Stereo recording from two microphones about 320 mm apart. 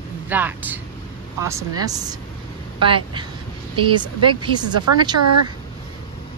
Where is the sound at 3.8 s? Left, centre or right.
Centre.